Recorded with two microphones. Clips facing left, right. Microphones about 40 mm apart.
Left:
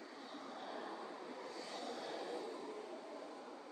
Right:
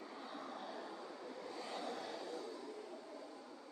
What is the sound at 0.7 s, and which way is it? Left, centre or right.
Vehicle, centre.